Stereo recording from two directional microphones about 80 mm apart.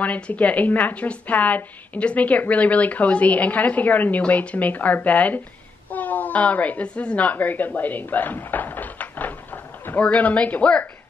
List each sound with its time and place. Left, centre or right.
0.0 s a woman's voice: centre